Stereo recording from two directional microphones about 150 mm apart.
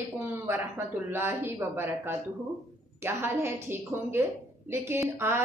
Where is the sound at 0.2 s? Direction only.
15° right (ahead or behind).